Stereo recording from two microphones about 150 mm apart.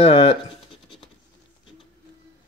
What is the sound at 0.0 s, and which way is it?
Speech, 40° left (ahead or behind).